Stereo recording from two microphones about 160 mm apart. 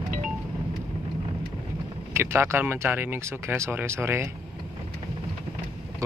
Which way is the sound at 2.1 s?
15° right (ahead or behind).